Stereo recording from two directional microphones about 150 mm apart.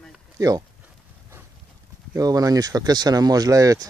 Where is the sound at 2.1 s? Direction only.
25° right (ahead or behind).